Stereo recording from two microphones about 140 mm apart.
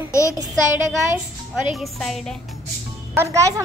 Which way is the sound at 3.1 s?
20° right (ahead or behind).